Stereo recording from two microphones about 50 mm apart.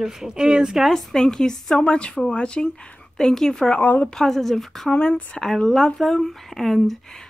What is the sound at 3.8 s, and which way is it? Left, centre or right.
Speech, left.